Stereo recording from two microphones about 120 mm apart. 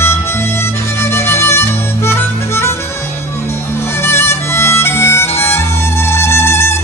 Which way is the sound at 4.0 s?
20° left (ahead or behind).